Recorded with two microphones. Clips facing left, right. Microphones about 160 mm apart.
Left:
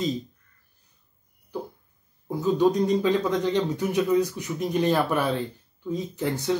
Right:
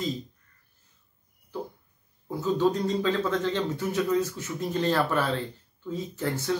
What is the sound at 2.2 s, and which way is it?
Speech, 15° left (ahead or behind).